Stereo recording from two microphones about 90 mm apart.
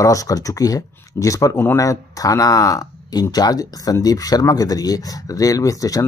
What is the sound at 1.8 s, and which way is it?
Speech, 40° left (ahead or behind).